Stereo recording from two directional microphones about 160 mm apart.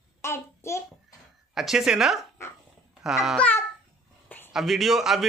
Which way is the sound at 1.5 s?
Centre (ahead or behind).